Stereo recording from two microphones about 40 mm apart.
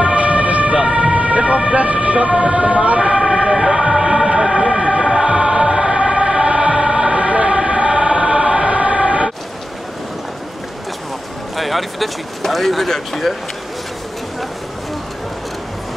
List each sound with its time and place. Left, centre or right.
0.0 s emergency vehicle: right
0.7 s ambulance: centre
1.1 s emergency vehicle: right
3.2 s emergency vehicle: centre
7.2 s choir: right
11.5 s a sound: centre
12.4 s speech: centre